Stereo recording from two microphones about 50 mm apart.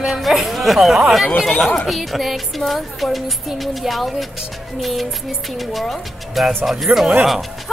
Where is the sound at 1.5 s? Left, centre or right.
Centre.